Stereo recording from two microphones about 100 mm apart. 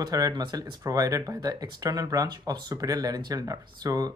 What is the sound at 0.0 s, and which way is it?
Speech, 45° right (ahead or behind).